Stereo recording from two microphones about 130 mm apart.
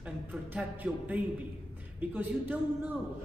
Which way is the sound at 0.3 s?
10° right (ahead or behind).